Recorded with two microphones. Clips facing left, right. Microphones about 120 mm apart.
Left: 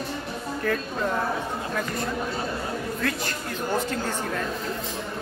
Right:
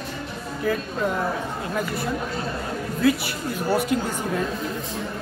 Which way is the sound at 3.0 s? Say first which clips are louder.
Right 7 dB; 10° right (ahead or behind).